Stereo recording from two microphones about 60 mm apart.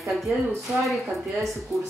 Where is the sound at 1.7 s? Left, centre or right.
Right.